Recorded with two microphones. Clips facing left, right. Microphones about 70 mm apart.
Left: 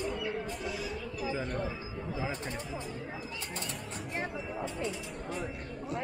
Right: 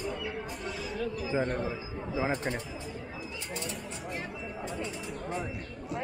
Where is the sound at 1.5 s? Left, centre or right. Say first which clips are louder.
Right 2 dB; centre.